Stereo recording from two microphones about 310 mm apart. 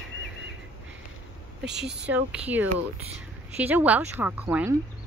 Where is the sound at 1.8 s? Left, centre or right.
Right.